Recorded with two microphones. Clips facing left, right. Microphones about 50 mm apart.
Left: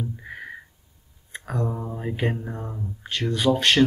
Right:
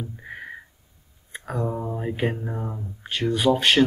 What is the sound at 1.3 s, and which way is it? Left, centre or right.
Speech, centre.